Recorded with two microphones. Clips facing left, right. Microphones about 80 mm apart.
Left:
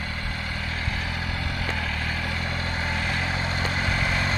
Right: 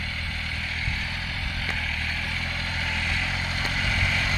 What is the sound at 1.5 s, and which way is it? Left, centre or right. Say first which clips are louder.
Vehicle: left 1 dB; left.